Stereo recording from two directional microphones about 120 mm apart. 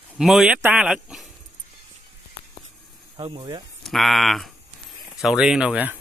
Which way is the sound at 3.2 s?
45° right (ahead or behind).